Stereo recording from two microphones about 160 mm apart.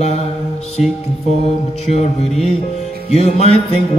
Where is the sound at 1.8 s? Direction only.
40° left (ahead or behind).